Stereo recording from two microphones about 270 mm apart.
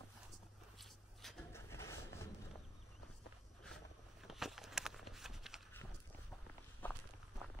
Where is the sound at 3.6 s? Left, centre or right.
Centre.